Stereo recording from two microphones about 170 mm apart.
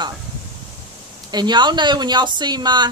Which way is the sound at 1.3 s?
25° right (ahead or behind).